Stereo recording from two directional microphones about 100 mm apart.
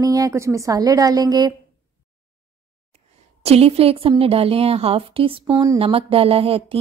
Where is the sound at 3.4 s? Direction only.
90° right; by 6.8 s 70° right (ahead or behind).